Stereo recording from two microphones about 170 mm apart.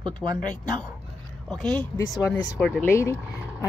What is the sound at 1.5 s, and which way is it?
Speech, 5° left (ahead or behind).